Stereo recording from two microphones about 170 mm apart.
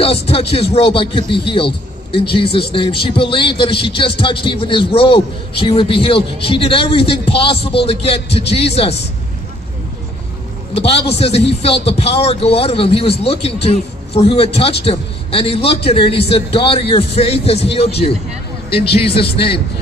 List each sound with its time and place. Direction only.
0.0 s a man's voice: 35° left (ahead or behind)
10.9 s a man's voice: 35° left (ahead or behind)
18.8 s a man's voice: 70° left (ahead or behind)